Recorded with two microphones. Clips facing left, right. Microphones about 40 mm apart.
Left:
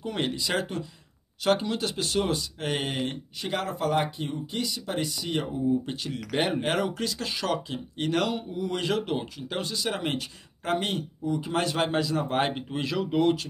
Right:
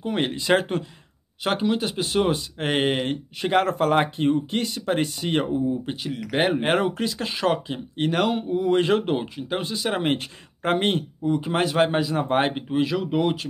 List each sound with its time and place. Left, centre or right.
0.0 s speech: right
1.4 s speech: right
2.6 s speech: right
5.9 s speech: centre
6.6 s speech: right
11.3 s speech: right; by 13.4 s centre